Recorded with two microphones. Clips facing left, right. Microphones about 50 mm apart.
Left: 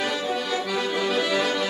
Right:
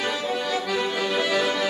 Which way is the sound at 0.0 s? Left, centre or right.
Centre.